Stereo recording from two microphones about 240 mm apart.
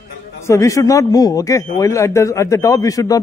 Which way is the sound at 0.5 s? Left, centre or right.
Centre.